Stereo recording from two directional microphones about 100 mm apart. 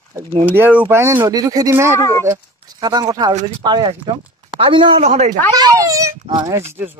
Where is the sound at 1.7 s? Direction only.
25° right (ahead or behind).